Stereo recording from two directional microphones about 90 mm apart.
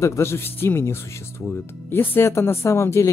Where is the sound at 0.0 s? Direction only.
30° left (ahead or behind).